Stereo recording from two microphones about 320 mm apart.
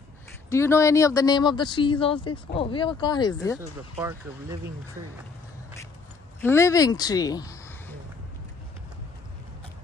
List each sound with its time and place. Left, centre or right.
0.5 s speech: centre
3.9 s speech: centre
6.4 s speech: centre